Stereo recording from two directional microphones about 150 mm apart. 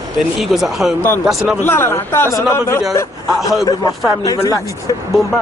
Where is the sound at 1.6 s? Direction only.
15° left (ahead or behind).